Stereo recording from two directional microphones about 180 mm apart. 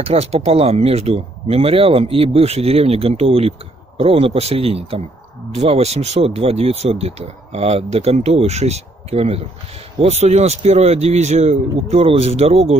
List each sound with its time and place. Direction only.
0.0 s speech: 35° right (ahead or behind)